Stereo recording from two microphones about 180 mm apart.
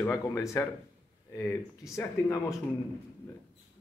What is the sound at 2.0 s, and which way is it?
Speech, 15° left (ahead or behind).